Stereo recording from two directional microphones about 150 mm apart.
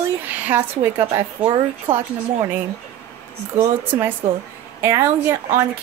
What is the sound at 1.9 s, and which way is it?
Speech, 35° right (ahead or behind).